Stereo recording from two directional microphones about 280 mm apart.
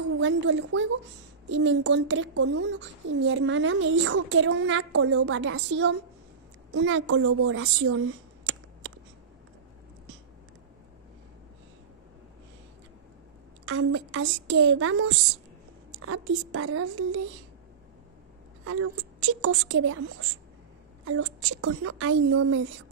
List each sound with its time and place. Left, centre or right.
0.2 s a woman's voice: right
13.7 s a woman's voice: right
18.6 s a woman's voice: right